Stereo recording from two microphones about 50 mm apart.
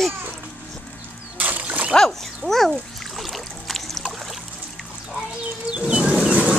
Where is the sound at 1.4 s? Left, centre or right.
Right.